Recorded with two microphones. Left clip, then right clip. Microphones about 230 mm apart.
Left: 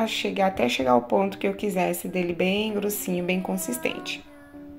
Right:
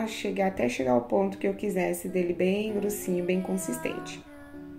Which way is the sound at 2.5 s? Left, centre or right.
Left.